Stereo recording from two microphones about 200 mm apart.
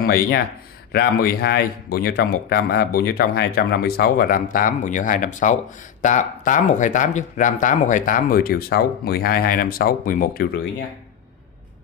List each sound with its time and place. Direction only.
0.0 s a man's voice: 50° left (ahead or behind)